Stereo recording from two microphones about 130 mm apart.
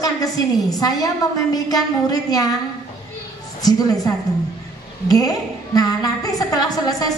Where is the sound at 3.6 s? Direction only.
30° left (ahead or behind).